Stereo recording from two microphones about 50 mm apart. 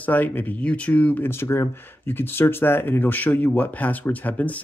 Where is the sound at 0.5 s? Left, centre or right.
Left.